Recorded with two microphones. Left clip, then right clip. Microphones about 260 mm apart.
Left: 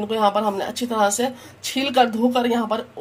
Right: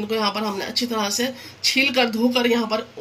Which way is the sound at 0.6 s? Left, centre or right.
Left.